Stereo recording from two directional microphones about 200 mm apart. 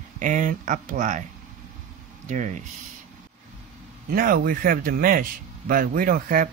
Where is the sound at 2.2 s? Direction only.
35° right (ahead or behind).